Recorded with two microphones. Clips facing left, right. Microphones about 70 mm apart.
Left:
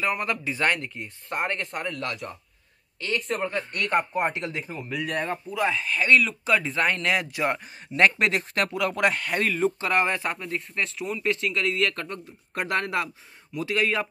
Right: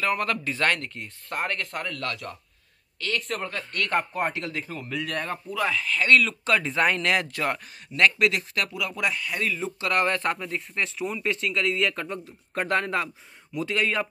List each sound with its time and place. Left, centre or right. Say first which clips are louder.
0.0 s speech: right 1 dB; centre
3.2 s speech: left 6 dB; centre
5.8 s speech: right 1 dB; centre
8.2 s speech: even; left
8.6 s speech: left 5 dB; left
9.8 s speech: left 1 dB; left
10.0 s speech: right 2 dB; centre